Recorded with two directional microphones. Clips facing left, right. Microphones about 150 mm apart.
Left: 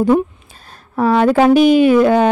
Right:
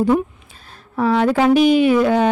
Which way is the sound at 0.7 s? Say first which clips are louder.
Left 3 dB; 45° left (ahead or behind).